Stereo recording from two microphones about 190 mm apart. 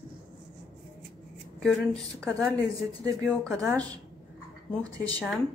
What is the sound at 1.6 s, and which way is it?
Speech, centre (ahead or behind).